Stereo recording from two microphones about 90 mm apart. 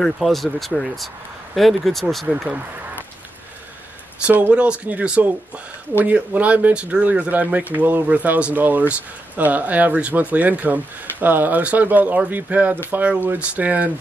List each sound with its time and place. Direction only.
0.0 s speech: centre (ahead or behind)
4.3 s speech: 15° right (ahead or behind)